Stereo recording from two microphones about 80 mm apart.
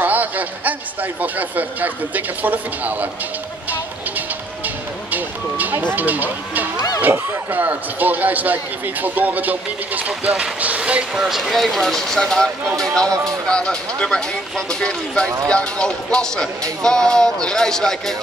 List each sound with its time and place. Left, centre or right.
0.0 s a man's voice: right
4.6 s a sound: right
7.0 s a man's voice: right; by 13.1 s centre
13.1 s speech: right
13.5 s speech: centre